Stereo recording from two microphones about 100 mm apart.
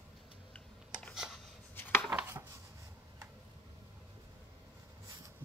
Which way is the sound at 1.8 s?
20° left (ahead or behind).